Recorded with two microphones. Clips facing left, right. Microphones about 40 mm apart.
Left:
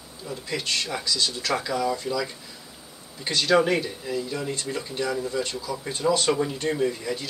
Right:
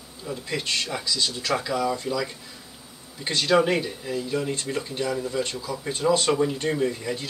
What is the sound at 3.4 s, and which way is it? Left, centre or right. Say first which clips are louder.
Speech: even; centre.